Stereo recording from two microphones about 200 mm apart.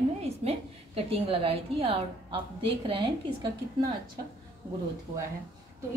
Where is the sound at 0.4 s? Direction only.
30° right (ahead or behind).